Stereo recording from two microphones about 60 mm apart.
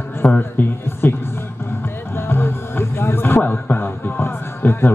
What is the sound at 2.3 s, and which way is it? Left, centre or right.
Music, left.